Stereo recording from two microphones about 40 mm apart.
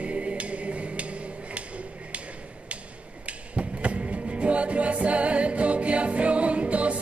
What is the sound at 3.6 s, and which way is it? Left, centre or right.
Music, right.